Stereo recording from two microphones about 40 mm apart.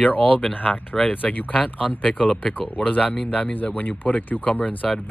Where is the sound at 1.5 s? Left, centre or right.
Left.